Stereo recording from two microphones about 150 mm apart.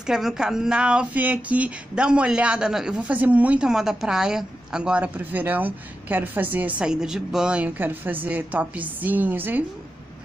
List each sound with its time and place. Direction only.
0.0 s speech: 5° right (ahead or behind)